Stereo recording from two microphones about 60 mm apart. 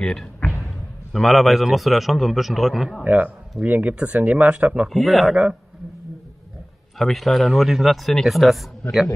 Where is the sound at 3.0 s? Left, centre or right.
Right.